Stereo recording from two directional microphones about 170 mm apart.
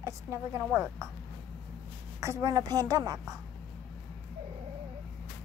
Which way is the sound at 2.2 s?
20° right (ahead or behind).